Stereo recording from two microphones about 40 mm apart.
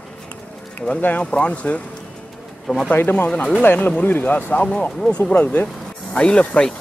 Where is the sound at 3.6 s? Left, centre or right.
Left.